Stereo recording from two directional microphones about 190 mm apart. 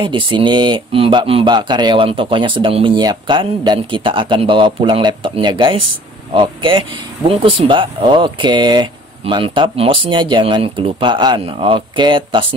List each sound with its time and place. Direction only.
0.0 s speech: 25° right (ahead or behind)